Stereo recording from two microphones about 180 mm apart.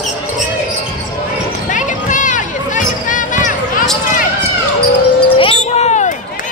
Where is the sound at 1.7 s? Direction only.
45° left (ahead or behind).